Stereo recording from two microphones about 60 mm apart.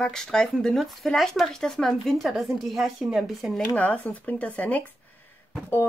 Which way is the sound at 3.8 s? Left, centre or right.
Left.